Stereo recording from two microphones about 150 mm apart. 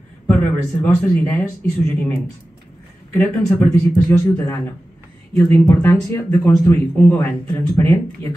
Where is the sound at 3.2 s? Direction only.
20° left (ahead or behind).